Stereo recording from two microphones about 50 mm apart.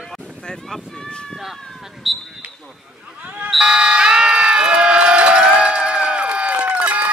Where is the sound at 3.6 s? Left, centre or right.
Centre.